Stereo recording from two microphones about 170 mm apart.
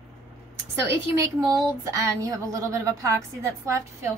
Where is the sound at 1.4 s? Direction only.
20° right (ahead or behind).